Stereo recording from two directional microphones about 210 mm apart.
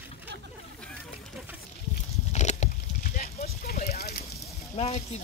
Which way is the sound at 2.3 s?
35° left (ahead or behind).